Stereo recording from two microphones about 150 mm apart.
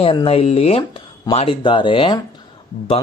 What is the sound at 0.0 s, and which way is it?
Speech, 35° left (ahead or behind).